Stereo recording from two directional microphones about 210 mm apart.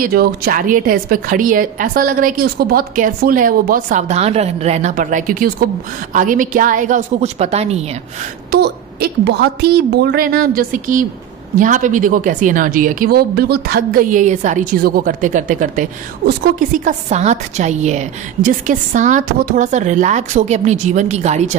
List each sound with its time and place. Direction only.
0.0 s a woman's voice: 45° right (ahead or behind)
8.5 s a woman's voice: 50° right (ahead or behind); by 21.5 s 35° right (ahead or behind)